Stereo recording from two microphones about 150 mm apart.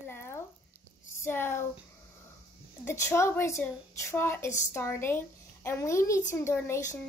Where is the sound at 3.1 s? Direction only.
15° left (ahead or behind).